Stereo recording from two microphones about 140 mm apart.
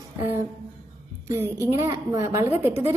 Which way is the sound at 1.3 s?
15° right (ahead or behind).